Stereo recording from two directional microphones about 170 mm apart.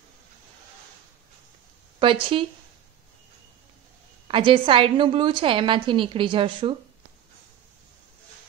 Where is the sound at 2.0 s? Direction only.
30° right (ahead or behind).